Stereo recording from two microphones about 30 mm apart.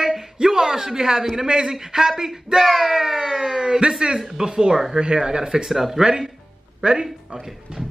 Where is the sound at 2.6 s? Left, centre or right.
Centre.